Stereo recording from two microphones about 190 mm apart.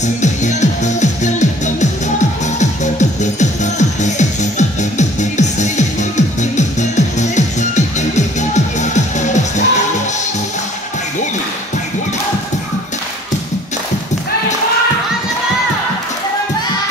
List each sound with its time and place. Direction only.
0.0 s music: 40° left (ahead or behind)